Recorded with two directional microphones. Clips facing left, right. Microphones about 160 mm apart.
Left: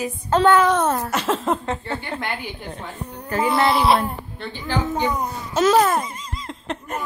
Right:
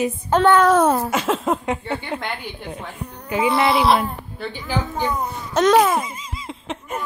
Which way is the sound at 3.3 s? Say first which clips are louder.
Right 1 dB; centre (ahead or behind).